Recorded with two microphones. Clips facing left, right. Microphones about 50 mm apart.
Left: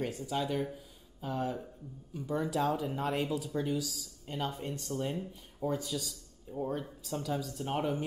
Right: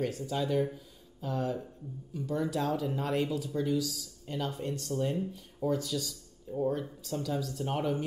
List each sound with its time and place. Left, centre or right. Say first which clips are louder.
0.0 s speech: right 2 dB; centre
3.5 s speech: right 3 dB; left